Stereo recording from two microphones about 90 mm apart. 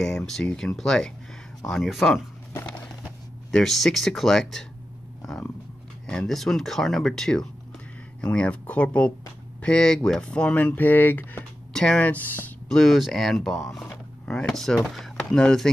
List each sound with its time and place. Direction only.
0.3 s speech: 5° left (ahead or behind)
3.5 s speech: 5° left (ahead or behind)
6.0 s speech: 5° left (ahead or behind)
11.7 s speech: 10° left (ahead or behind)
12.6 s speech: 5° left (ahead or behind)